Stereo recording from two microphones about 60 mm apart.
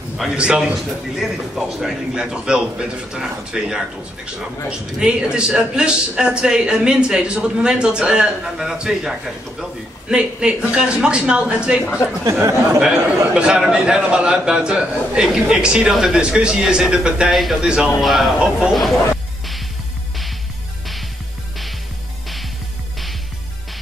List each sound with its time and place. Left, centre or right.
0.3 s a man's voice: centre
12.3 s speech: right
13.3 s a man's voice: centre
18.0 s a man's voice: centre